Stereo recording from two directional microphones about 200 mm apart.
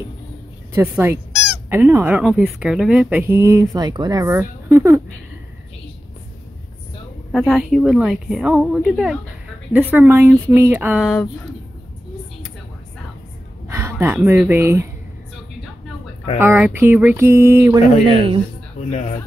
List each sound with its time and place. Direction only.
0.8 s a woman's voice: 10° right (ahead or behind)
7.3 s a woman's voice: centre (ahead or behind)
13.7 s speech: 10° right (ahead or behind)
16.3 s a woman's voice: 10° right (ahead or behind)
18.0 s speech: 25° right (ahead or behind)
18.9 s speech: 35° left (ahead or behind)